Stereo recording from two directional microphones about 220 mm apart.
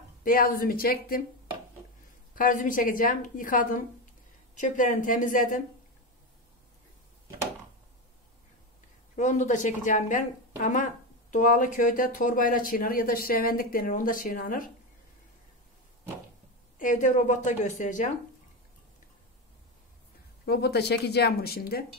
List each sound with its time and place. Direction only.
0.2 s a woman's voice: 40° left (ahead or behind)
2.3 s a woman's voice: 40° left (ahead or behind)
9.1 s a woman's voice: 35° left (ahead or behind)
16.7 s a woman's voice: 35° left (ahead or behind)
20.4 s speech: 45° left (ahead or behind)